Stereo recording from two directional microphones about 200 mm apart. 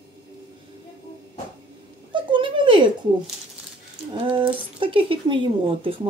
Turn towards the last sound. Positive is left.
turn(degrees=-25)  # may be behind; listen again after turning